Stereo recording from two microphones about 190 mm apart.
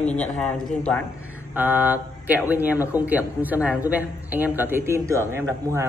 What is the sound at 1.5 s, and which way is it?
A man's voice, 10° right (ahead or behind).